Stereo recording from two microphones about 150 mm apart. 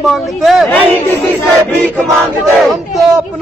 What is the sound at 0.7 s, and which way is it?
Speech, 15° left (ahead or behind).